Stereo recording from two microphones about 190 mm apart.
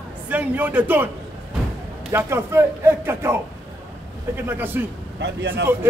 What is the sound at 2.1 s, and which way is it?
A man's voice, 15° right (ahead or behind).